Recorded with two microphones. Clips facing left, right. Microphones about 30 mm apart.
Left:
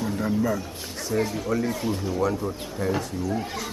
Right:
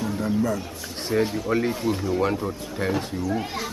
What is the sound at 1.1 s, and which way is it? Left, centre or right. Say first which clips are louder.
Speech: right 2 dB; right.